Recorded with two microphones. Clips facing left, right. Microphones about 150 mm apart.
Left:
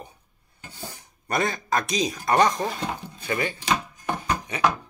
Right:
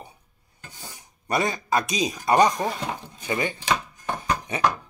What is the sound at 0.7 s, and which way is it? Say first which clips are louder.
Speech: left 4 dB; 15° right (ahead or behind).